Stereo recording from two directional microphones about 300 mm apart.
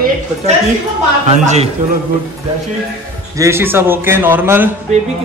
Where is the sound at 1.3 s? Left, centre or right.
Right.